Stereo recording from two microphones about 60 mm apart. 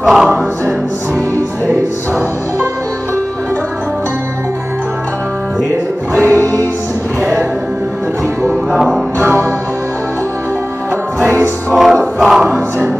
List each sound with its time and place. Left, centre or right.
0.0 s music: centre
6.2 s music: right
8.7 s music: centre
9.2 s music: right
11.7 s choir: centre